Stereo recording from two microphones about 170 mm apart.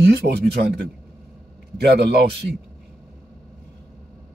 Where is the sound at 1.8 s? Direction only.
75° right (ahead or behind).